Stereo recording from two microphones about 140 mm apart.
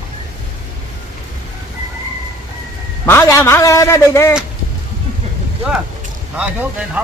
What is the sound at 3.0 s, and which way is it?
A man's voice, 15° left (ahead or behind).